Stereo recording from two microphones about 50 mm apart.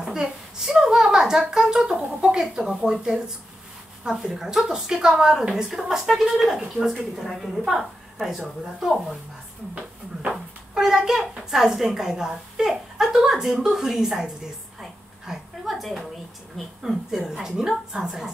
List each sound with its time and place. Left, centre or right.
0.0 s a woman's voice: centre
10.3 s a woman's voice: centre
15.2 s a sound: centre
16.5 s a woman's voice: centre